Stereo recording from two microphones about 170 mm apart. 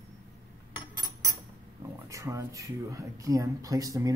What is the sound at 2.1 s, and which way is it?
Speech, 20° right (ahead or behind).